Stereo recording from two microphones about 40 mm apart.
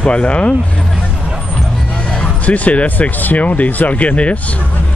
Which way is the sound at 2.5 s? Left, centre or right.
Left.